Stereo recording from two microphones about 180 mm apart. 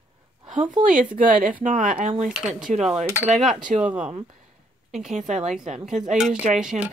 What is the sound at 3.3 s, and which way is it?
Speech, centre (ahead or behind).